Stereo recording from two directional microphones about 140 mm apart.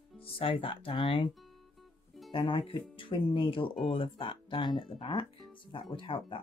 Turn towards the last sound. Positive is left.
turn(degrees=35)  # may be behind; listen again after turning